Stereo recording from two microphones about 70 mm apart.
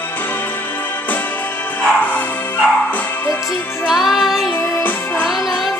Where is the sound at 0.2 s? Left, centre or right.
Left.